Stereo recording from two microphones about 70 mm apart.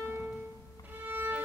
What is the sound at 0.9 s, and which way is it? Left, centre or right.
Violin, right.